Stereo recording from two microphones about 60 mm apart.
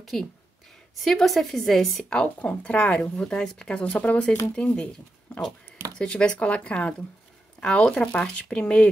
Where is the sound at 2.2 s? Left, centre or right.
Left.